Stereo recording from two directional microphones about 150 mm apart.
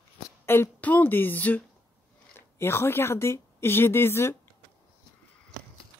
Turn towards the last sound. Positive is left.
turn(degrees=15)  # may be behind; listen again after turning